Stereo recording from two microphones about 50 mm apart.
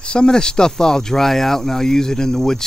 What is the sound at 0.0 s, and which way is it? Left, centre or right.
Speech, centre.